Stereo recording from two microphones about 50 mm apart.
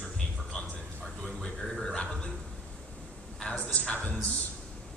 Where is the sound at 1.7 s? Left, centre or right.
Centre.